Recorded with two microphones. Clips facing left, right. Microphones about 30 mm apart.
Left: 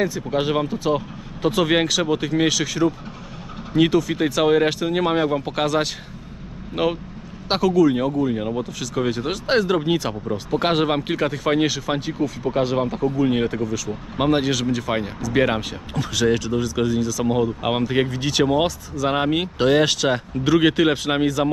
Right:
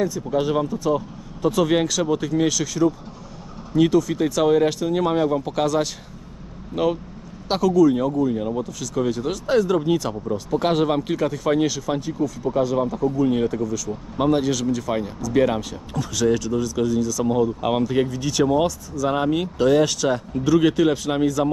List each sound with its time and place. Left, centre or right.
0.0 s speech: left
13.0 s speech: left